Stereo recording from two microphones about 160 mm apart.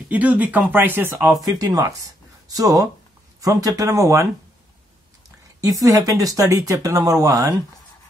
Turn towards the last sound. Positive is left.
turn(degrees=-20)  # may be behind; listen again after turning